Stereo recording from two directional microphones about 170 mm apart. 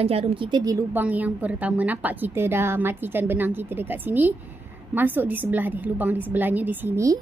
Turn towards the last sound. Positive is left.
turn(degrees=-20)  # may be behind; listen again after turning